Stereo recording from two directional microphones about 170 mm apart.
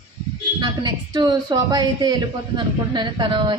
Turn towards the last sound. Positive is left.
turn(degrees=-30)  # may be behind; listen again after turning